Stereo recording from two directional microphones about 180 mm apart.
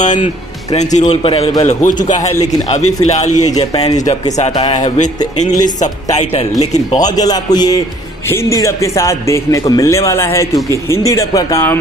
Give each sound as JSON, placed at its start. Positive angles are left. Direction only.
{"t": 0.0, "sound": "a man's voice", "side_deg": 40}
{"t": 3.4, "sound": "a man's voice", "side_deg": 20}
{"t": 4.0, "sound": "a man's voice", "side_deg": 35}
{"t": 7.0, "sound": "a man's voice", "side_deg": 20}